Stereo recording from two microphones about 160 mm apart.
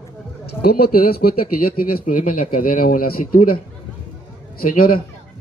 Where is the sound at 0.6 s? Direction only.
70° left (ahead or behind).